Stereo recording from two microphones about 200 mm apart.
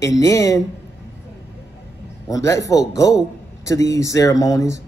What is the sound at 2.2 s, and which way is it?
Speech, 15° left (ahead or behind).